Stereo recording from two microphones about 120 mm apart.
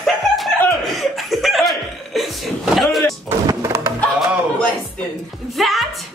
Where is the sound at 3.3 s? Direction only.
25° right (ahead or behind).